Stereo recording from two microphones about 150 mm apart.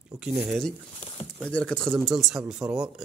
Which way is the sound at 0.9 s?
35° left (ahead or behind).